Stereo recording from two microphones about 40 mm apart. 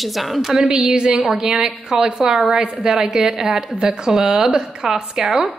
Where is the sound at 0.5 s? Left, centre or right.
Centre.